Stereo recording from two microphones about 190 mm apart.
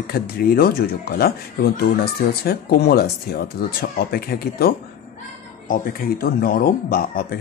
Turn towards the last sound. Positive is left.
turn(degrees=50)  # may be behind; listen again after turning